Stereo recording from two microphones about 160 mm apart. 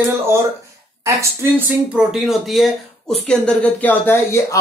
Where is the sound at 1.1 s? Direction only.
20° right (ahead or behind).